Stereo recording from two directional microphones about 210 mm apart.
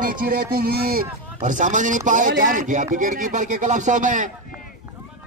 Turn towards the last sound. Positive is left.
turn(degrees=-35)  # may be behind; listen again after turning